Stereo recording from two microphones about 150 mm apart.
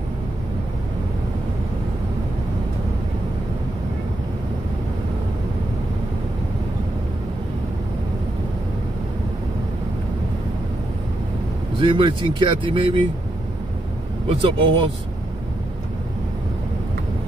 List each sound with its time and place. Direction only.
11.8 s speech: 35° right (ahead or behind)
14.4 s speech: 35° right (ahead or behind)